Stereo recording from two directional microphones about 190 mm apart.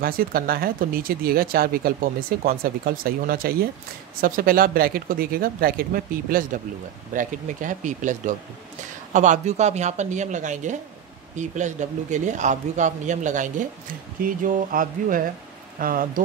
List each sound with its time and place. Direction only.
0.0 s speech: 50° right (ahead or behind)